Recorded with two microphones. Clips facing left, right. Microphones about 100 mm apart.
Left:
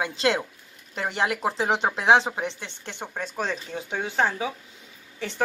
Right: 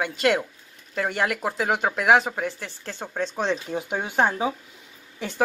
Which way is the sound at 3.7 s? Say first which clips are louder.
Even; 15° right (ahead or behind).